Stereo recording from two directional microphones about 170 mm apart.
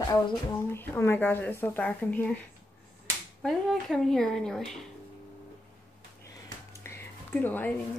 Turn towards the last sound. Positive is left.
turn(degrees=10)  # may be behind; listen again after turning